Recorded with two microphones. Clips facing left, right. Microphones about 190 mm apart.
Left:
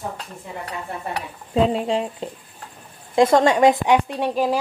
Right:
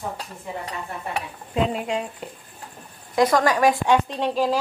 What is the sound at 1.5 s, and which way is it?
A woman's voice, 30° left (ahead or behind).